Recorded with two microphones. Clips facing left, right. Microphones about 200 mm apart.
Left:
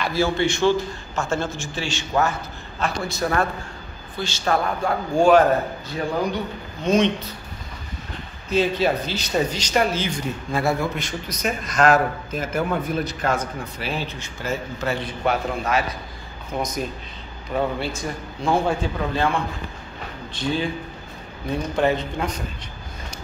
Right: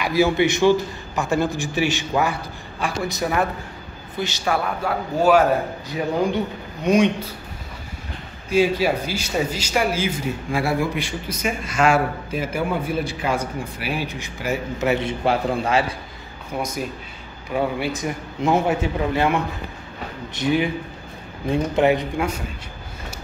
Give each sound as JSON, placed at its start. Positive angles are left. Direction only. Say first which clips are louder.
{"t": 0.0, "sound": "speech", "louder": "right 3 dB", "side_deg": -15}
{"t": 4.8, "sound": "speech", "louder": "left 1 dB", "side_deg": -5}
{"t": 8.5, "sound": "speech", "louder": "right 2 dB", "side_deg": -10}
{"t": 16.5, "sound": "a man's voice", "louder": "even", "side_deg": -10}
{"t": 21.7, "sound": "speech", "louder": "right 2 dB", "side_deg": -15}